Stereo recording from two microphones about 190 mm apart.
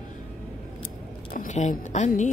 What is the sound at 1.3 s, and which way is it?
Speech, 40° left (ahead or behind).